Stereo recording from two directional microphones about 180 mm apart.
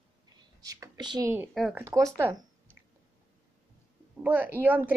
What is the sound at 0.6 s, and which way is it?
Speech, 20° right (ahead or behind).